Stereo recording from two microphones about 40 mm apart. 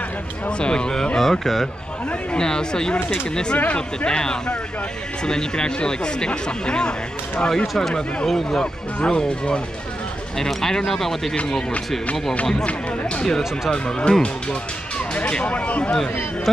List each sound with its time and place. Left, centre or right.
0.5 s speech: left
2.3 s speech: centre
3.5 s speech: left
7.6 s speech: centre
9.0 s speech: left
13.7 s speech: left
15.4 s speech: left